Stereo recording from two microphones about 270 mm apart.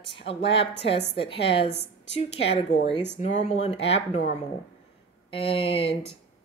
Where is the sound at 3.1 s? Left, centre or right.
Left.